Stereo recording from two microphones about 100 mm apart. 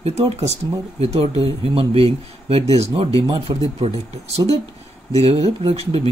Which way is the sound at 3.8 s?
90° right.